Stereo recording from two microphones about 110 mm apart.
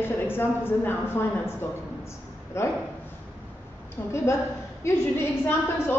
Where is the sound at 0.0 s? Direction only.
20° left (ahead or behind).